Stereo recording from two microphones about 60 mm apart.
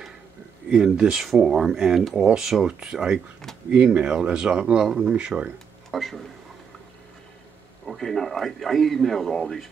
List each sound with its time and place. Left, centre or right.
0.8 s speech: centre
5.1 s speech: centre
5.9 s speech: centre
7.8 s speech: centre